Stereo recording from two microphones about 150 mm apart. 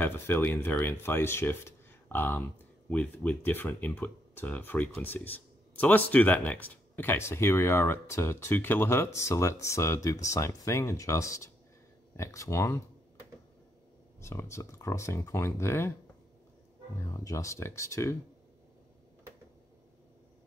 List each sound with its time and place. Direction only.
0.0 s speech: 15° left (ahead or behind)
14.2 s speech: 20° left (ahead or behind)
17.1 s speech: 20° left (ahead or behind)